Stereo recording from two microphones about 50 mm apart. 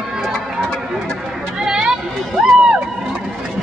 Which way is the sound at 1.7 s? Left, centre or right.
Centre.